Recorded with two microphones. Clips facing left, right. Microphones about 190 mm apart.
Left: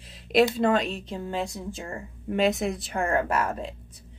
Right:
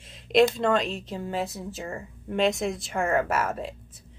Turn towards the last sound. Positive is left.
turn(degrees=-5)  # may be behind; listen again after turning